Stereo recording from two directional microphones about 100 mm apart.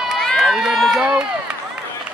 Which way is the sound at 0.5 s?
Centre (ahead or behind).